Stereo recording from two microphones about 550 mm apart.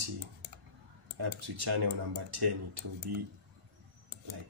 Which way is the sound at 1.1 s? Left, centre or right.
Right.